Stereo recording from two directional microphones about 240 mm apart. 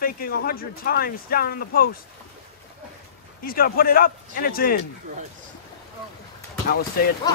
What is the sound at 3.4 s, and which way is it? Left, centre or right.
Speech, left.